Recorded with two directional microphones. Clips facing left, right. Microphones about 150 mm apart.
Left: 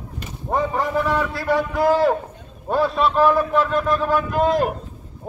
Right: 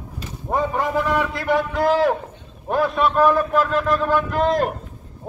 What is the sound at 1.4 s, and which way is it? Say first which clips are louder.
Speech: even; 20° right (ahead or behind).